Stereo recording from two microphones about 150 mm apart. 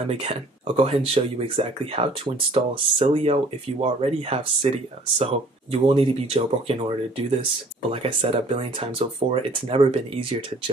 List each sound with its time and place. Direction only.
0.1 s speech: 40° right (ahead or behind)